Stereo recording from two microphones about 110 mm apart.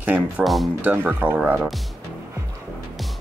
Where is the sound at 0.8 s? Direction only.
15° right (ahead or behind).